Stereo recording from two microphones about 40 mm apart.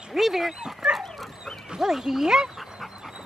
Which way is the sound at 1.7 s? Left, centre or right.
Centre.